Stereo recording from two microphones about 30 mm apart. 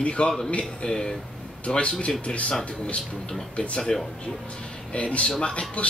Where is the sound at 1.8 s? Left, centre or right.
Left.